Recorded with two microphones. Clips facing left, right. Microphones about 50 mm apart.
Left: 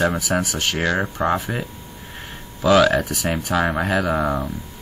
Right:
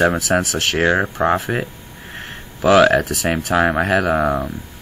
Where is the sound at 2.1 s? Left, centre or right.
Right.